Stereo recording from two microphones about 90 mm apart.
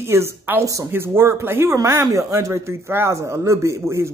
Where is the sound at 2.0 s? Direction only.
35° right (ahead or behind).